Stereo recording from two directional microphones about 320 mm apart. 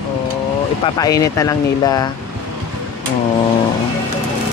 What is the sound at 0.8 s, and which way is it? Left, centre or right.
Speech, centre.